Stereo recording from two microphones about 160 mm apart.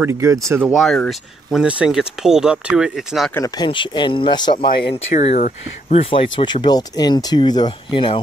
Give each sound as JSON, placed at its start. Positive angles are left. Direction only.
{"t": 0.0, "sound": "speech", "side_deg": -15}
{"t": 0.7, "sound": "speech", "side_deg": 5}
{"t": 3.3, "sound": "speech", "side_deg": 25}
{"t": 5.1, "sound": "speech", "side_deg": 50}